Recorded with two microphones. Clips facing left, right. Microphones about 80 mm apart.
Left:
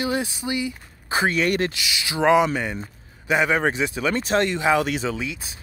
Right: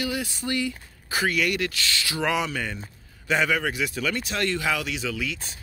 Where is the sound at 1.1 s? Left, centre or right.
Left.